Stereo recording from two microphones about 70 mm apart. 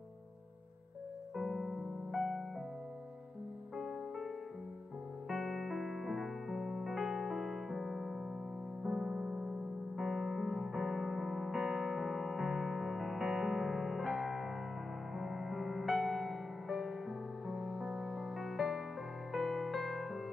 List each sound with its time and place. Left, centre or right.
1.3 s music: centre
3.7 s music: centre
5.3 s music: centre